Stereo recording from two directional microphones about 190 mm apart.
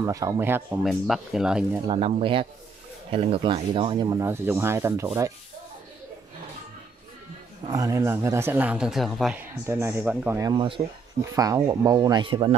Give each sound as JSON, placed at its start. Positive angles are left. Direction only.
{"t": 0.0, "sound": "speech", "side_deg": -15}
{"t": 0.8, "sound": "speech", "side_deg": 0}
{"t": 1.9, "sound": "speech", "side_deg": -30}
{"t": 7.6, "sound": "speech", "side_deg": -15}
{"t": 10.5, "sound": "speech", "side_deg": -25}